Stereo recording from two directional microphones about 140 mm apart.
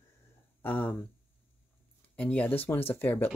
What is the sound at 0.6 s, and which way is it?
Speech, 10° left (ahead or behind).